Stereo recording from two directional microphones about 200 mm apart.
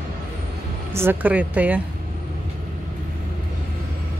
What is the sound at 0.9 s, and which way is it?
Speech, 10° right (ahead or behind).